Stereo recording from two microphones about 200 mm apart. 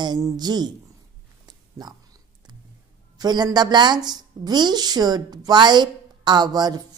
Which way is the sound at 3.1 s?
20° right (ahead or behind).